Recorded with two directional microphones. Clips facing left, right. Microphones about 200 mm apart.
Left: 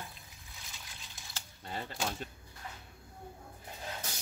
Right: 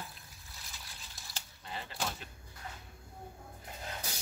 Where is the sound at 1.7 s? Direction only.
45° left (ahead or behind).